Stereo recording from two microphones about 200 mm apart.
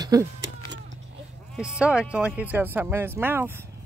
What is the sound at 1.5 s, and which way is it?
Speech, 5° right (ahead or behind).